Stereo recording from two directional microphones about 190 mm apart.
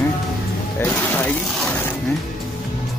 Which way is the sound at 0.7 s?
10° left (ahead or behind).